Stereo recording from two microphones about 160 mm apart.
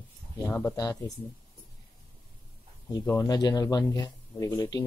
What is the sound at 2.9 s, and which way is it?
Speech, 20° left (ahead or behind).